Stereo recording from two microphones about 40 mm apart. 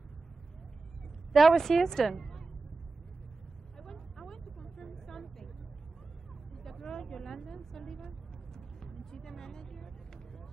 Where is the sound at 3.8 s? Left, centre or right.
Centre.